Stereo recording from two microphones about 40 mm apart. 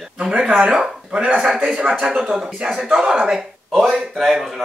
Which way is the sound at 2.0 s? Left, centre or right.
Centre.